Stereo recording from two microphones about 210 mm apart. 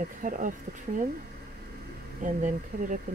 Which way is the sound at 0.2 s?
40° right (ahead or behind).